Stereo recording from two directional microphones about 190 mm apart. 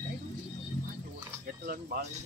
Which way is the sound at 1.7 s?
55° right (ahead or behind).